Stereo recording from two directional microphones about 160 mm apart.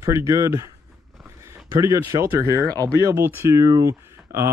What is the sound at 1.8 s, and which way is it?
Speech, 20° right (ahead or behind).